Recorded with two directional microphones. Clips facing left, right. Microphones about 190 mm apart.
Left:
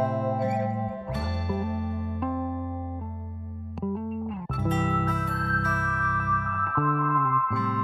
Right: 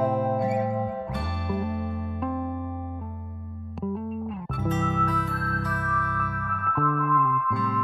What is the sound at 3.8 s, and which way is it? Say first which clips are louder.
Music: even; centre (ahead or behind).